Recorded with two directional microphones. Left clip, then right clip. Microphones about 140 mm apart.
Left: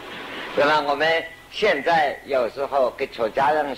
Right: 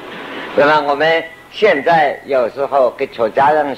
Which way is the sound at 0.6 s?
30° right (ahead or behind).